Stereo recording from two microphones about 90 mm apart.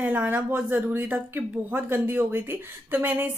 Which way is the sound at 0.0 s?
20° right (ahead or behind).